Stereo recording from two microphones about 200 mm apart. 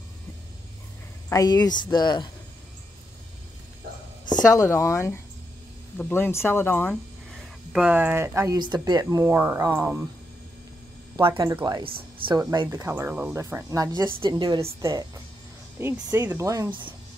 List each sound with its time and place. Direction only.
1.3 s speech: 20° left (ahead or behind)
4.5 s speech: 15° left (ahead or behind)
7.7 s speech: 5° right (ahead or behind)
11.1 s a woman's voice: 25° right (ahead or behind)